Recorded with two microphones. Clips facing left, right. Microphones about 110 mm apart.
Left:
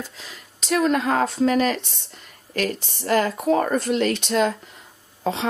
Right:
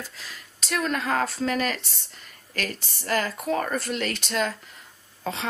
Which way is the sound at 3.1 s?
20° left (ahead or behind).